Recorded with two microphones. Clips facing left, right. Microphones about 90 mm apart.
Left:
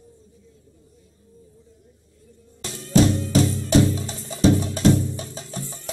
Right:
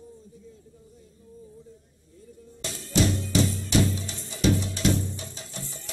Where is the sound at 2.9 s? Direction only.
40° left (ahead or behind).